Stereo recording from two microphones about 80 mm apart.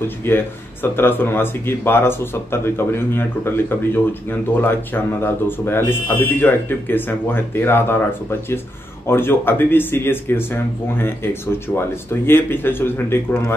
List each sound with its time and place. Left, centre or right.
0.2 s speech: left